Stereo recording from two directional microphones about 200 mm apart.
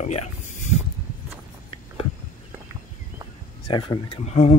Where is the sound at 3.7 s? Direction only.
25° left (ahead or behind).